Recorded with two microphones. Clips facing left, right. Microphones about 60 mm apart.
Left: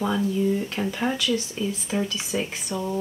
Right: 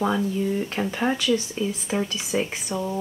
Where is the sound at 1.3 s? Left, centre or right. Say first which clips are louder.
Right 2 dB; centre.